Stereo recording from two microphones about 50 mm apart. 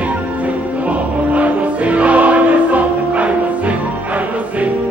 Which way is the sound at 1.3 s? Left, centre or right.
Right.